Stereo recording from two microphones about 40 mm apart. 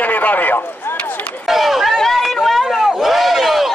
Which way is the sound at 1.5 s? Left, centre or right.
Centre.